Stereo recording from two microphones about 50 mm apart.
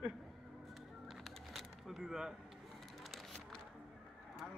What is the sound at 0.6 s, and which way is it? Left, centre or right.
Bird, centre.